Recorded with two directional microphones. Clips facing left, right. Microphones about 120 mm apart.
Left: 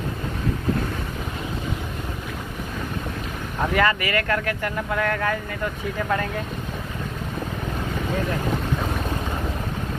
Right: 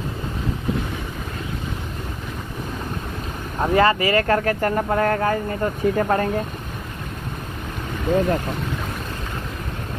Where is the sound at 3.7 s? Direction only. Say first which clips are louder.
Right 5 dB; 30° right (ahead or behind).